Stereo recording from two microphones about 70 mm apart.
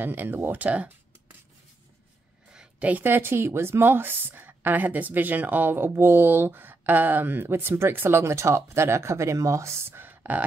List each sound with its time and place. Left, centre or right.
0.0 s speech: right
2.5 s a sound: centre
2.9 s a woman's voice: right